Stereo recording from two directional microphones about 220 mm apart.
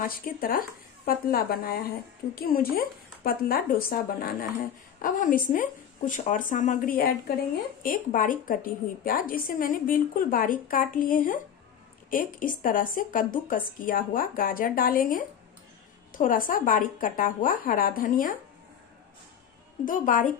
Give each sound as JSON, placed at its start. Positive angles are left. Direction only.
{"t": 0.0, "sound": "a woman's voice", "side_deg": 40}
{"t": 19.8, "sound": "a woman's voice", "side_deg": 35}